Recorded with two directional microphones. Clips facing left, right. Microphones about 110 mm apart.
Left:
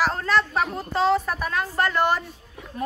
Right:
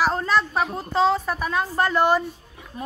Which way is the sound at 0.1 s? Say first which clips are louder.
Right 1 dB; 5° right (ahead or behind).